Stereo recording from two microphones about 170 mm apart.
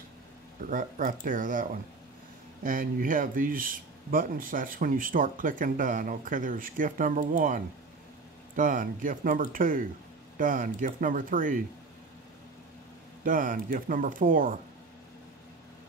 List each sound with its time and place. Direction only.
0.7 s speech: 50° right (ahead or behind)
13.2 s speech: 50° right (ahead or behind)